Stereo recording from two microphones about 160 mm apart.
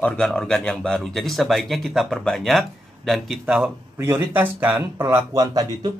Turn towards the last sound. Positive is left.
turn(degrees=-25)  # may be behind; listen again after turning